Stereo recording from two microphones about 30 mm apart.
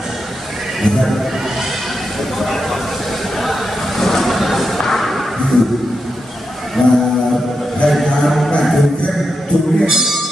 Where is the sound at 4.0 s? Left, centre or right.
Centre.